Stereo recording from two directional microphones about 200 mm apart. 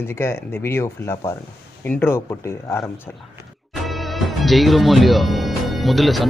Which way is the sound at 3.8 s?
Centre (ahead or behind).